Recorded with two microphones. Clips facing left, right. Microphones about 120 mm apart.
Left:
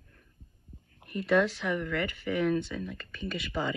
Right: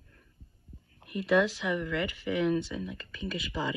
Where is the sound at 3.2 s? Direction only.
60° left (ahead or behind).